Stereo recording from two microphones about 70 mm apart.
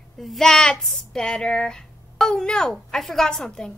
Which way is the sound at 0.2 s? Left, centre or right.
Centre.